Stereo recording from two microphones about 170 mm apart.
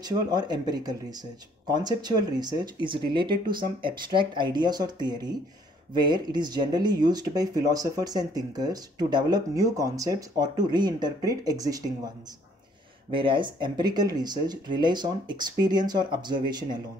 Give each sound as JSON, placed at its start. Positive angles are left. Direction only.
{"t": 0.0, "sound": "speech", "side_deg": -25}
{"t": 13.1, "sound": "speech", "side_deg": -30}